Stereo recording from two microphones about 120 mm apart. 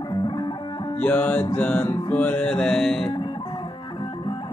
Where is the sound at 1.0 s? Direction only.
10° left (ahead or behind).